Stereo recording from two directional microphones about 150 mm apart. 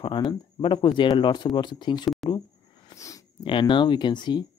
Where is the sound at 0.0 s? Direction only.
30° left (ahead or behind).